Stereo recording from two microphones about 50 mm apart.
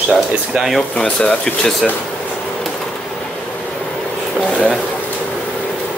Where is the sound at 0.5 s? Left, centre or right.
Centre.